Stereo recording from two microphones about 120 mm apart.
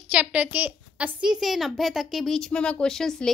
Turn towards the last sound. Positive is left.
turn(degrees=5)  # may be behind; listen again after turning